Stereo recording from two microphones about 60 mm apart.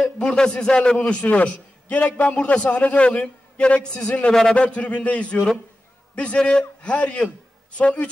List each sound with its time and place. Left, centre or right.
0.0 s speech: centre
0.9 s a man's voice: left
4.3 s a man's voice: centre
4.6 s a man's voice: centre